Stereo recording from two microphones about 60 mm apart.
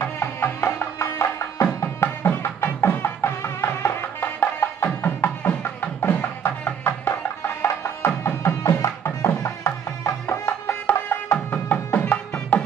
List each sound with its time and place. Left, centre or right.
0.0 s music: left